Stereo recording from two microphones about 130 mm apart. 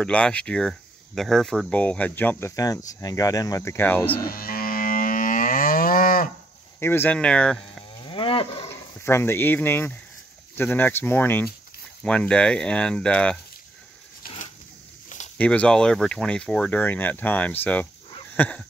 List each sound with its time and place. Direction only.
0.0 s speech: 10° left (ahead or behind)
2.5 s speech: 25° left (ahead or behind)
4.2 s livestock: 90° left
6.8 s speech: 15° left (ahead or behind)
8.0 s moo: 45° left (ahead or behind)
8.6 s speech: 20° left (ahead or behind)
14.2 s a sound: 90° left
15.3 s speech: 10° left (ahead or behind)
18.3 s a sound: 10° left (ahead or behind)